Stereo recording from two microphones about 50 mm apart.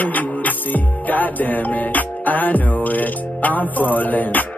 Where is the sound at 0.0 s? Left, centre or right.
Left.